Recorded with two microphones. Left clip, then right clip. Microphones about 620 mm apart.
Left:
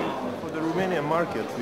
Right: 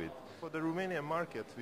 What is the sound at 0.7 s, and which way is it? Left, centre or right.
Speech, right.